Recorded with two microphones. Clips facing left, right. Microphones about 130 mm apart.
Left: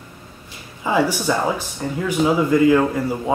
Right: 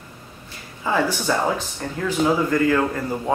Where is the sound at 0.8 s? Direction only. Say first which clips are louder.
Left 2 dB; 10° left (ahead or behind).